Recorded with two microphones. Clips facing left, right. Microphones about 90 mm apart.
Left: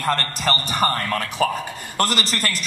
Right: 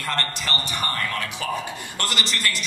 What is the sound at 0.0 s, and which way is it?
A man's voice, 40° left (ahead or behind).